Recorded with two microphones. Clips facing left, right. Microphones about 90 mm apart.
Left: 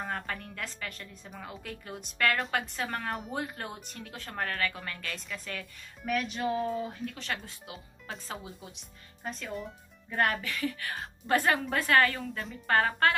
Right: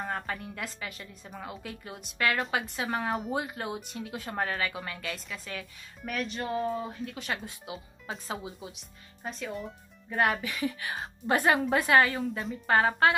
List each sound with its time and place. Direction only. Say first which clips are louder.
0.0 s a woman's voice: right 2 dB; 5° right (ahead or behind)
10.4 s a woman's voice: right 1 dB; 15° right (ahead or behind)